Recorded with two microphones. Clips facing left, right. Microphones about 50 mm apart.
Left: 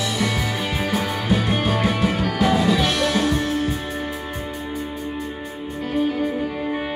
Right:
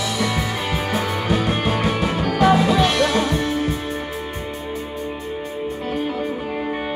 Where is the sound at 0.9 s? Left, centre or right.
Centre.